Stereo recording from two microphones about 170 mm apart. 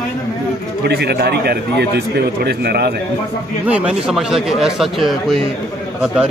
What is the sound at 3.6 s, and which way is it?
Speech, 5° right (ahead or behind).